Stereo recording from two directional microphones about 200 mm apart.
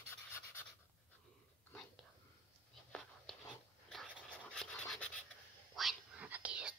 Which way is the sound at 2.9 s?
Centre (ahead or behind).